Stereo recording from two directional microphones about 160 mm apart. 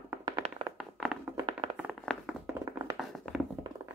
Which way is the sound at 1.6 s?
35° right (ahead or behind).